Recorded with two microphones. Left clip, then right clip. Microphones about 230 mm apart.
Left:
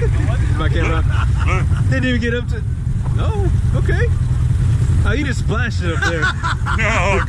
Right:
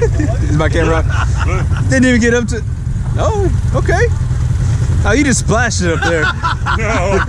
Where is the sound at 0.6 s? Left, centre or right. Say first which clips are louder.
Right 8 dB; right.